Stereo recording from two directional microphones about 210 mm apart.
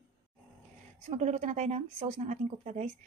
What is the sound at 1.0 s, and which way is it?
Speech, 30° right (ahead or behind).